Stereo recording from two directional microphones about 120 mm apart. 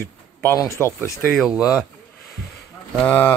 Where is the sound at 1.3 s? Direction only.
Centre (ahead or behind).